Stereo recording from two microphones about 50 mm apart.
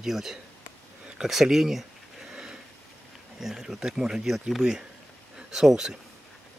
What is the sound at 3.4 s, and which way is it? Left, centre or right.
Speech, centre.